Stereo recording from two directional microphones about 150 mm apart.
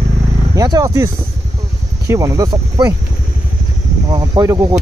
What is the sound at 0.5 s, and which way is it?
Speech, 25° right (ahead or behind).